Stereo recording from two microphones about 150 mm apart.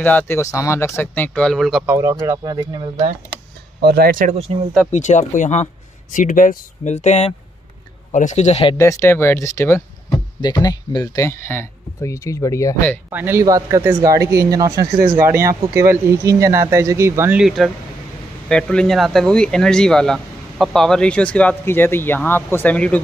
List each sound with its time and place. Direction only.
0.0 s speech: 10° left (ahead or behind)
1.9 s speech: 20° right (ahead or behind)
3.8 s speech: 90° right
4.3 s speech: 45° right (ahead or behind)
4.9 s speech: 50° left (ahead or behind)
8.7 s speech: 20° left (ahead or behind)
10.4 s speech: 25° left (ahead or behind)
13.1 s speech: 15° right (ahead or behind)
17.4 s speech: centre (ahead or behind)